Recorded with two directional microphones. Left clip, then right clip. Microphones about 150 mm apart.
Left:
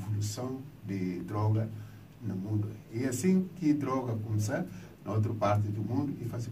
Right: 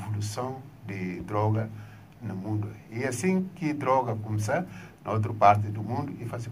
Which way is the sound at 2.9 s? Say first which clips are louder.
Right 3 dB; 45° right (ahead or behind).